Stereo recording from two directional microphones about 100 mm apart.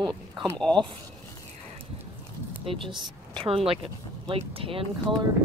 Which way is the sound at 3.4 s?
70° right (ahead or behind).